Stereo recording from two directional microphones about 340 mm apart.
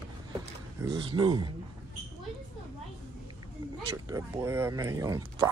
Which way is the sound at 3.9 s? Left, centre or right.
Centre.